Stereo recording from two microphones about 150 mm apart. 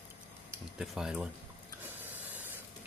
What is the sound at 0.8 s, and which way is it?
Speech, centre (ahead or behind).